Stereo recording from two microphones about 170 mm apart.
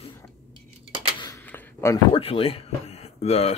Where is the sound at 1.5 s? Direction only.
10° left (ahead or behind).